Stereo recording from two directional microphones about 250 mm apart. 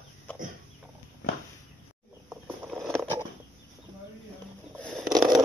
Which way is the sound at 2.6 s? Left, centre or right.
Centre.